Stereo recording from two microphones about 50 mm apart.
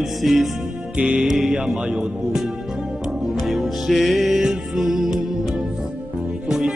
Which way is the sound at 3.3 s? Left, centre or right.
Centre.